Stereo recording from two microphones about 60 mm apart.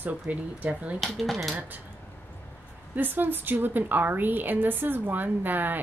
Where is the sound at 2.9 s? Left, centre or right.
Right.